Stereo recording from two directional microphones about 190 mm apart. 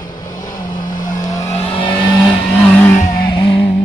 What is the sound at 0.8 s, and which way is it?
Vehicle, 45° left (ahead or behind).